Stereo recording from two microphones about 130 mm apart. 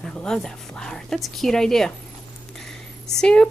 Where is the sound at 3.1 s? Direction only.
5° left (ahead or behind).